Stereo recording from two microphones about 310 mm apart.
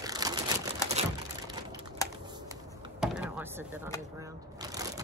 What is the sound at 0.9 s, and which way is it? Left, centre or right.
Typing, right.